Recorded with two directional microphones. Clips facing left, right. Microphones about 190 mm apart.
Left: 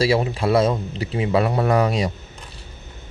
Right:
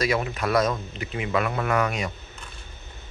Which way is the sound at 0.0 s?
30° left (ahead or behind).